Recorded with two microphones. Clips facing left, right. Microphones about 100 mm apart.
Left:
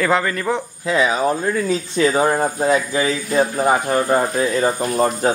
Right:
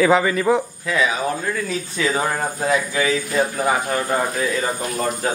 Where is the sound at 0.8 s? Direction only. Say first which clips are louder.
Left 3 dB; 25° left (ahead or behind).